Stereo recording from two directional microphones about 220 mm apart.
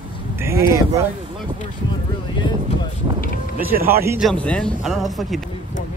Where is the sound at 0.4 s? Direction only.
10° right (ahead or behind).